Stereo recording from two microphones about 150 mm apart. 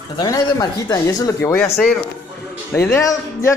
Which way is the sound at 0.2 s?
25° left (ahead or behind).